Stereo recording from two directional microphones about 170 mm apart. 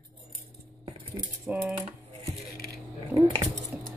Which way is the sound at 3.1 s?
20° right (ahead or behind).